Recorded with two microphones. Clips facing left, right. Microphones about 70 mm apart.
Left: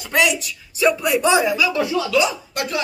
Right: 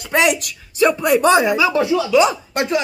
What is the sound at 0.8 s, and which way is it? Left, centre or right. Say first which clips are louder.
Speech: right 3 dB; right.